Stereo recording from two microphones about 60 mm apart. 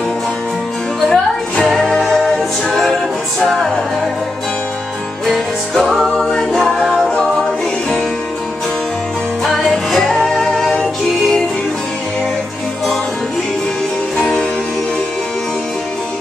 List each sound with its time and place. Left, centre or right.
1.0 s music: centre
5.2 s music: centre
9.4 s music: centre
14.1 s music: centre